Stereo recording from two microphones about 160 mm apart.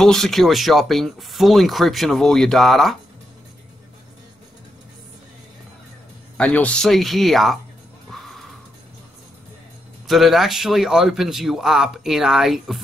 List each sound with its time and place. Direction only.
0.0 s speech: centre (ahead or behind)
6.3 s speech: 10° left (ahead or behind)
8.1 s music: centre (ahead or behind)
10.0 s speech: centre (ahead or behind)